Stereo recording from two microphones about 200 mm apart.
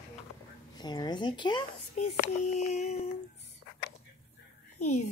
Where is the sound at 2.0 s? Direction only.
35° left (ahead or behind).